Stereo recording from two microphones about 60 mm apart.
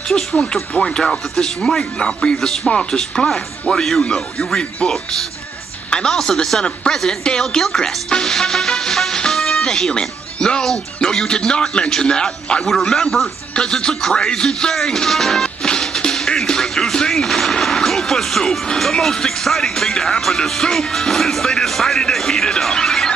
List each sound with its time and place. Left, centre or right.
0.1 s speech: centre
5.9 s a woman's voice: centre